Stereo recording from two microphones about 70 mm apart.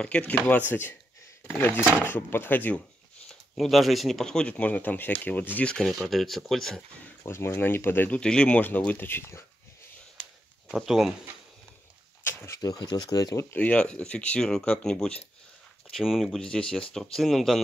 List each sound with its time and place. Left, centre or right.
0.0 s speech: centre
3.3 s speech: centre; by 5.7 s left
5.7 s speech: centre
7.2 s speech: left
8.1 s speech: centre
8.5 s speech: left
10.9 s speech: centre
12.3 s a sound: left
12.5 s speech: left
13.5 s speech: left
15.9 s speech: centre
16.3 s speech: centre